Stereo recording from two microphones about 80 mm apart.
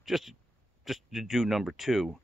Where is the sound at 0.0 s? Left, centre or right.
Centre.